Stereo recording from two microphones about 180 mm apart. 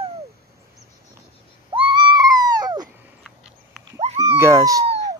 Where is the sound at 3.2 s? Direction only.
Centre (ahead or behind).